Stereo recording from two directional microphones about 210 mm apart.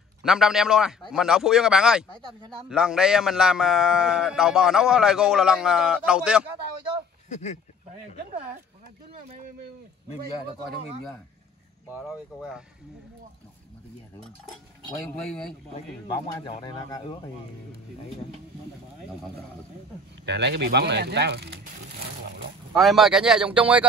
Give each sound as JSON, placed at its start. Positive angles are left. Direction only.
{"t": 0.2, "sound": "a man's voice", "side_deg": 0}
{"t": 7.2, "sound": "speech", "side_deg": 35}
{"t": 11.9, "sound": "a man's voice", "side_deg": 0}
{"t": 15.0, "sound": "a man's voice", "side_deg": 0}
{"t": 16.3, "sound": "speech", "side_deg": 25}
{"t": 20.2, "sound": "speech", "side_deg": -55}
{"t": 22.8, "sound": "a man's voice", "side_deg": 0}